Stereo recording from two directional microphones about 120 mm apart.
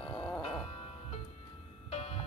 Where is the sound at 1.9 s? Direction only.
55° left (ahead or behind).